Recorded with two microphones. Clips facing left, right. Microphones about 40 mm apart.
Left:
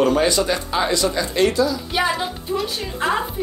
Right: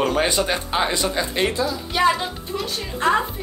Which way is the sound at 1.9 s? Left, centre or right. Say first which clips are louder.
Right 2 dB; centre.